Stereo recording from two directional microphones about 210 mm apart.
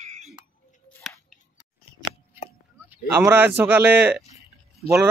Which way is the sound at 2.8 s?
10° right (ahead or behind).